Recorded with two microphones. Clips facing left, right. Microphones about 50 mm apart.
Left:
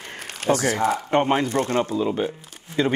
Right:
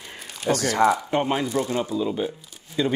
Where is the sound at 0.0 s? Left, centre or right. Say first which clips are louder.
Left 4 dB; left.